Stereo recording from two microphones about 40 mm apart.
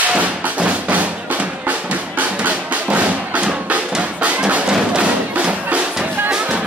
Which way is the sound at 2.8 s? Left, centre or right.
Right.